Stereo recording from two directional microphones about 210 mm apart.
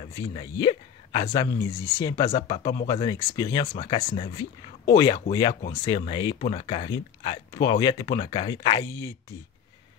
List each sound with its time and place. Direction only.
0.0 s speech: 25° left (ahead or behind)